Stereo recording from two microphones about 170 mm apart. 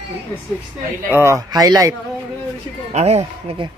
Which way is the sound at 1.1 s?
15° right (ahead or behind).